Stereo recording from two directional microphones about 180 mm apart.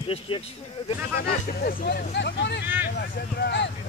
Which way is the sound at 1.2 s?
55° left (ahead or behind).